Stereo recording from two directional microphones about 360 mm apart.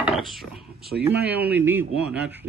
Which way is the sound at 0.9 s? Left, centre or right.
Right.